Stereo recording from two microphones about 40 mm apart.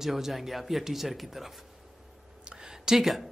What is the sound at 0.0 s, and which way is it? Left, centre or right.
Speech, centre.